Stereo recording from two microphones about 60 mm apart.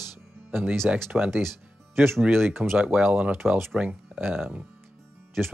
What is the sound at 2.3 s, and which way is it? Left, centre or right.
Speech, right.